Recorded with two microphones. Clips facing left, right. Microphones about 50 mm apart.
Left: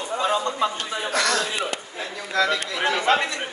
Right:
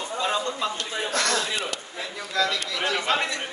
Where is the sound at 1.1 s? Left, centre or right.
Centre.